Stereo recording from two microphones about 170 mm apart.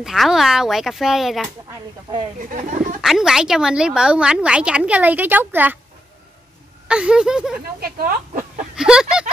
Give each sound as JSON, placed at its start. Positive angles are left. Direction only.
{"t": 0.0, "sound": "a woman's voice", "side_deg": 0}
{"t": 2.4, "sound": "speech", "side_deg": -50}
{"t": 3.0, "sound": "a woman's voice", "side_deg": -5}
{"t": 6.9, "sound": "a woman's voice", "side_deg": -5}
{"t": 7.8, "sound": "speech", "side_deg": -60}
{"t": 8.7, "sound": "speech", "side_deg": -5}